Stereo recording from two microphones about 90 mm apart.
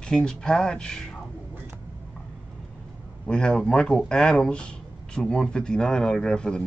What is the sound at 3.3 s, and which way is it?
Speech, 10° left (ahead or behind).